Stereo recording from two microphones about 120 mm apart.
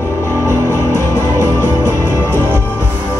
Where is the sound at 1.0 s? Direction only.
30° left (ahead or behind).